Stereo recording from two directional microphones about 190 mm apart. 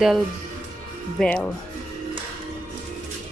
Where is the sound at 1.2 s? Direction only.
5° left (ahead or behind).